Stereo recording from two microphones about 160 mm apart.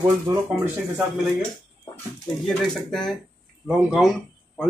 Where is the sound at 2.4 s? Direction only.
5° left (ahead or behind).